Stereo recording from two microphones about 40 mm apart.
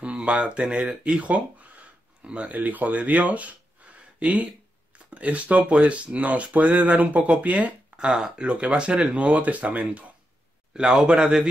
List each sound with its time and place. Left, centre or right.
0.0 s a sound: right
0.6 s speech: right
4.9 s speech: right
10.7 s speech: centre